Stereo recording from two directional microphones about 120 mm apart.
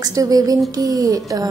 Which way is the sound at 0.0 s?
30° right (ahead or behind).